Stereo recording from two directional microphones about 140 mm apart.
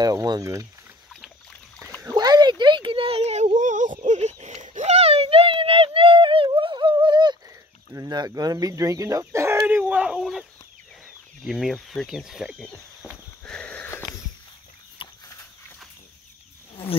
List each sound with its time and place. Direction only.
0.0 s speech: 25° right (ahead or behind)
1.2 s boat: 10° left (ahead or behind)
2.0 s a sound: 30° right (ahead or behind)
7.9 s speech: 30° right (ahead or behind); by 10.4 s 5° right (ahead or behind)
11.4 s speech: centre (ahead or behind)
13.4 s sniff: 10° left (ahead or behind)
15.0 s a sound: 35° left (ahead or behind)